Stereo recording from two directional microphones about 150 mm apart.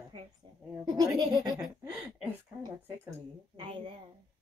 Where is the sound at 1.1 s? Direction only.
30° right (ahead or behind).